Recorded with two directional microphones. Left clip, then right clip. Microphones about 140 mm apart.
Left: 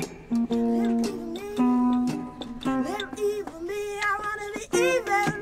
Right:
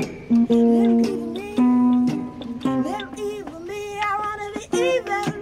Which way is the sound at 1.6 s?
5° left (ahead or behind).